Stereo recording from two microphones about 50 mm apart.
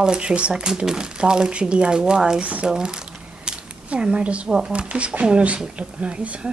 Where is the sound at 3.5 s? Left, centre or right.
Centre.